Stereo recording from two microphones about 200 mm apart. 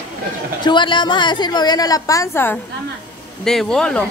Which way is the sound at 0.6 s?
20° left (ahead or behind).